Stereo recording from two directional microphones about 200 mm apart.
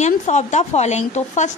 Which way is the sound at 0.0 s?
35° left (ahead or behind).